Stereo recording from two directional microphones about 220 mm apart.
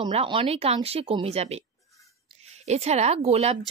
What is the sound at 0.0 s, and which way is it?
Speech, 25° right (ahead or behind).